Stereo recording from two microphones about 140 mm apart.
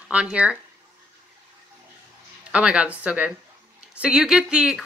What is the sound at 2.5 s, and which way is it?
Speech, 10° right (ahead or behind).